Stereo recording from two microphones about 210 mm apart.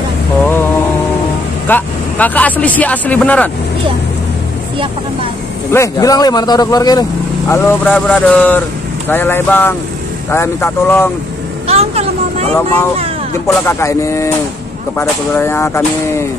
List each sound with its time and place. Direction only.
1.7 s speech: 5° left (ahead or behind)
5.7 s speech: 15° left (ahead or behind)
11.6 s vehicle: 30° right (ahead or behind)
13.7 s speech: 15° left (ahead or behind)